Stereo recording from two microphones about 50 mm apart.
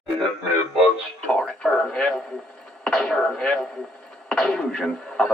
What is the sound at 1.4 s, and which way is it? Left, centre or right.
Speech, left.